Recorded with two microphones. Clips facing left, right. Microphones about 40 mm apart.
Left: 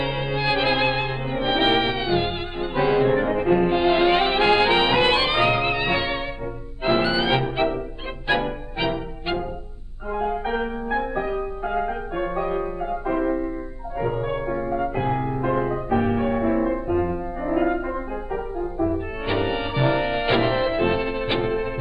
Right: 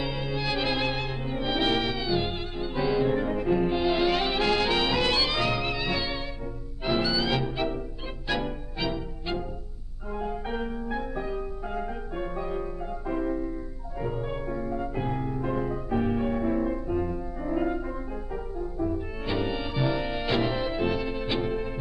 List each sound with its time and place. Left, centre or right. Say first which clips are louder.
0.0 s music: left 6 dB; left